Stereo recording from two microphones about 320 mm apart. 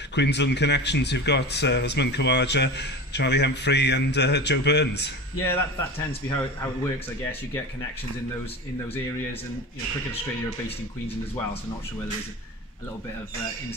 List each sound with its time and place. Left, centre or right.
0.1 s speech: left
5.5 s a man's voice: centre